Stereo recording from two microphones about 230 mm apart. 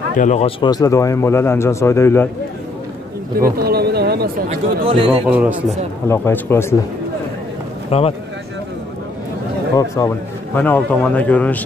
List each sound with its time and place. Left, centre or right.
0.2 s speech: left; by 2.2 s centre
3.3 s a sound: right
4.8 s a man's voice: right
5.2 s a man's voice: centre
6.0 s speech: centre
7.9 s speech: left
9.8 s speech: centre